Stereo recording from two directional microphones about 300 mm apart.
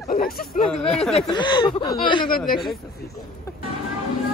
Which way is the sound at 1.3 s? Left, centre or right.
Centre.